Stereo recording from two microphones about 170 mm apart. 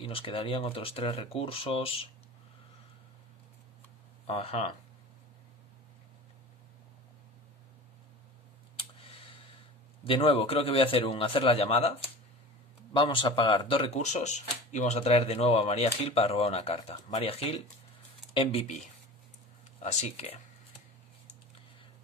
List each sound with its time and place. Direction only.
0.0 s speech: 35° left (ahead or behind)
4.3 s speech: 35° left (ahead or behind)
10.0 s speech: 30° left (ahead or behind)
12.9 s speech: 30° left (ahead or behind)
19.8 s speech: 40° left (ahead or behind)